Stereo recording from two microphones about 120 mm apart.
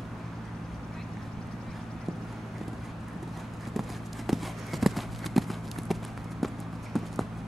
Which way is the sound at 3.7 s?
Centre (ahead or behind).